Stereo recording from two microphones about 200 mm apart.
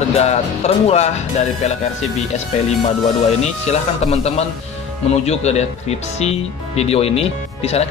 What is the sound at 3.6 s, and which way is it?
Speech, 35° left (ahead or behind).